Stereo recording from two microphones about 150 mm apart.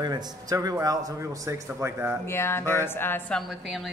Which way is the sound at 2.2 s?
15° left (ahead or behind).